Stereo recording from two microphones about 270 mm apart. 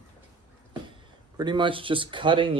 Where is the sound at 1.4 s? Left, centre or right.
Centre.